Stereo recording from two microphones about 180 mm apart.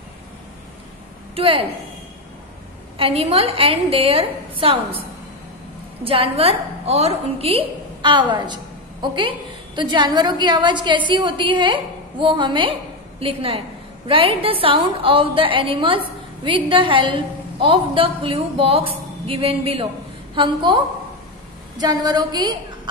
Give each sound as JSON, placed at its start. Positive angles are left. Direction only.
{"t": 1.3, "sound": "a woman's voice", "side_deg": -30}
{"t": 3.0, "sound": "a woman's voice", "side_deg": -30}
{"t": 6.0, "sound": "a woman's voice", "side_deg": -30}
{"t": 21.7, "sound": "a woman's voice", "side_deg": -20}